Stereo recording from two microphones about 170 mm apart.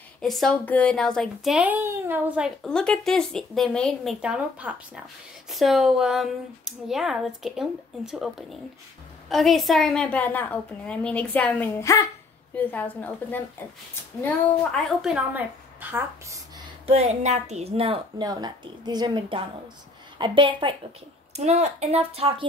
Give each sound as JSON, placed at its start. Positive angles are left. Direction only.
{"t": 0.2, "sound": "a child's voice", "side_deg": 0}
{"t": 16.8, "sound": "a woman's voice", "side_deg": -40}
{"t": 18.2, "sound": "a woman's voice", "side_deg": -25}